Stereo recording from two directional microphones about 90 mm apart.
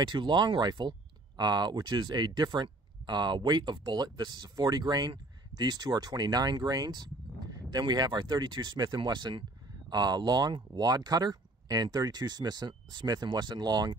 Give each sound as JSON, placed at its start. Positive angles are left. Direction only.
{"t": 0.0, "sound": "speech", "side_deg": -55}